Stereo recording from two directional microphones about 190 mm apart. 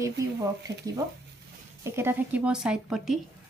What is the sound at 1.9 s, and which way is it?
A woman's voice, 10° right (ahead or behind).